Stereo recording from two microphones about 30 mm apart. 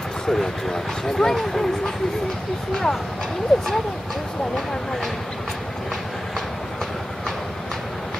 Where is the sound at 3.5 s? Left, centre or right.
Centre.